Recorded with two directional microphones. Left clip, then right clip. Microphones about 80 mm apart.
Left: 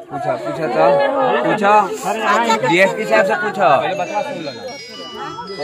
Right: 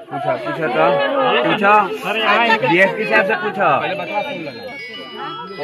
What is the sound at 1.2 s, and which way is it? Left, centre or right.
Speech, right.